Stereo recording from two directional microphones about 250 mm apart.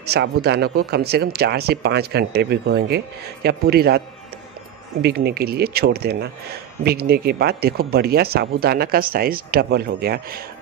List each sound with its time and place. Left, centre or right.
0.0 s speech: right
5.0 s speech: right